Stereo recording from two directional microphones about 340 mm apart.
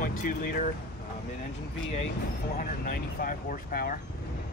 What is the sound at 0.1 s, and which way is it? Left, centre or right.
Speech, left.